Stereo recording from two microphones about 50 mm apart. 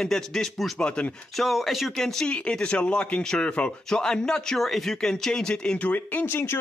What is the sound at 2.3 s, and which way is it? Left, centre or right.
Speech, centre.